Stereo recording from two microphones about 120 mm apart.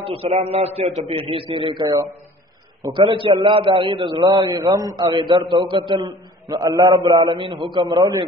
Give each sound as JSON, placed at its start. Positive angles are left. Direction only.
{"t": 0.0, "sound": "a man's voice", "side_deg": -55}
{"t": 5.1, "sound": "a man's voice", "side_deg": -45}